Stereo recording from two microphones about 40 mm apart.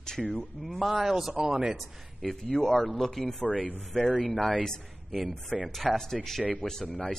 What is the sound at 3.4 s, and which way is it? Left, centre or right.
Speech, left.